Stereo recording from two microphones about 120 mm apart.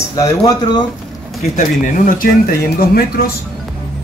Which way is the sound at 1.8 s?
90° left.